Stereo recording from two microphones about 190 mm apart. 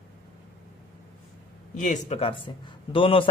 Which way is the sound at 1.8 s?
40° left (ahead or behind).